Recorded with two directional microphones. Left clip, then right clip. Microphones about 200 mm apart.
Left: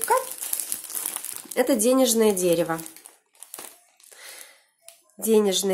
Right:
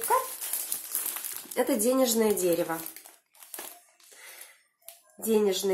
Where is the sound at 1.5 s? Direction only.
30° left (ahead or behind).